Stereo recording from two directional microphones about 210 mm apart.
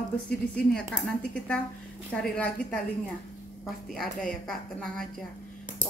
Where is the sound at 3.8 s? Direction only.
Centre (ahead or behind).